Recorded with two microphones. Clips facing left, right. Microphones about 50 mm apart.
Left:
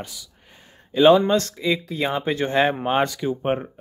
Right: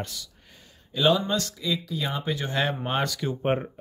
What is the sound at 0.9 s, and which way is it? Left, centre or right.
Speech, left.